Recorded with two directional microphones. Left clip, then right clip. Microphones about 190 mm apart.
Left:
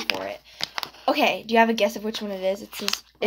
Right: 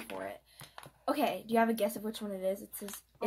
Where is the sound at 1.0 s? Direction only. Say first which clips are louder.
Left 11 dB; 10° left (ahead or behind).